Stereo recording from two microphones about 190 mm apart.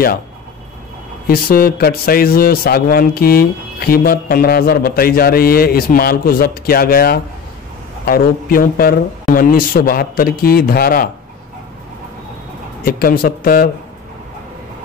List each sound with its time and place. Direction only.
1.2 s a man's voice: 50° left (ahead or behind)
12.8 s a man's voice: 50° left (ahead or behind)